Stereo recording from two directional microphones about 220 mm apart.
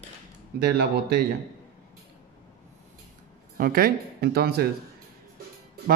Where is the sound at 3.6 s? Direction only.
40° right (ahead or behind).